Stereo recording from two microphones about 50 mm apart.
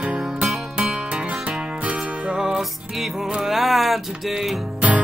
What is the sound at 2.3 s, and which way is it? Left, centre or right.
Music, centre.